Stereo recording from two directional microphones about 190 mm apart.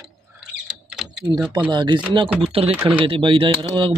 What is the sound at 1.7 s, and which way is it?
Speech, 25° right (ahead or behind).